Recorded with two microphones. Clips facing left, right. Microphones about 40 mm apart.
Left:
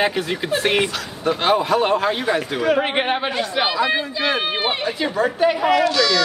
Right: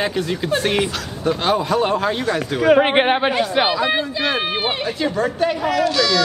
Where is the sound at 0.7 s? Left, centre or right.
Centre.